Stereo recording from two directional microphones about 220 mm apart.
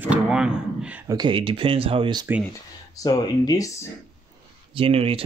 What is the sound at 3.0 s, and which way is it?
Speech, 15° left (ahead or behind).